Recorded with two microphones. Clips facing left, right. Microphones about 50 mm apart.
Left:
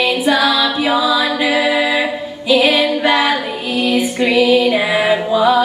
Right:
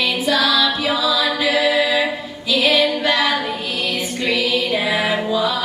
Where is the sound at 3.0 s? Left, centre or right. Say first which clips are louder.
Left 4 dB; centre.